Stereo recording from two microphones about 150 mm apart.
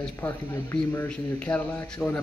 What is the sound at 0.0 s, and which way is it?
Speech, 15° left (ahead or behind).